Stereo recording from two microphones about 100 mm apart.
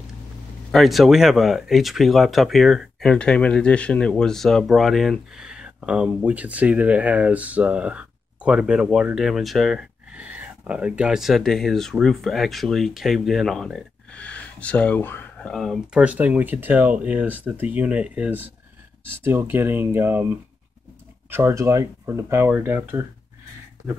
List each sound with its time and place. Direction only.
0.7 s speech: centre (ahead or behind)
10.1 s speech: 15° right (ahead or behind)
14.1 s speech: 15° left (ahead or behind)
15.4 s speech: 5° left (ahead or behind)
15.9 s speech: 10° right (ahead or behind)